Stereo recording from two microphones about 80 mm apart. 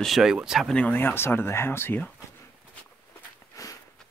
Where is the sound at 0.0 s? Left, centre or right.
Centre.